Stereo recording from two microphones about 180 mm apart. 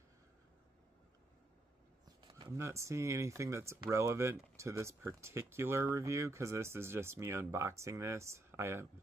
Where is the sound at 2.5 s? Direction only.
15° right (ahead or behind).